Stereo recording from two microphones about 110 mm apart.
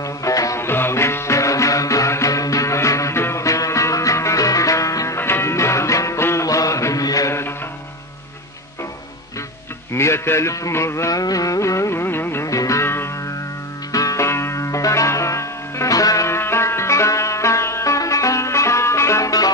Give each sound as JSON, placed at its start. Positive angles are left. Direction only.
{"t": 0.2, "sound": "music", "side_deg": 30}
{"t": 9.9, "sound": "music", "side_deg": 25}